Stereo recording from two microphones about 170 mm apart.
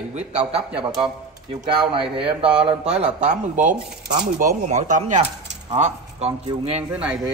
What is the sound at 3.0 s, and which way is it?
A man's voice, 45° right (ahead or behind).